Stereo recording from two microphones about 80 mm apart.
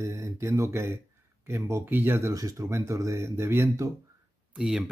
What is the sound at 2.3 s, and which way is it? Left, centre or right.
Speech, right.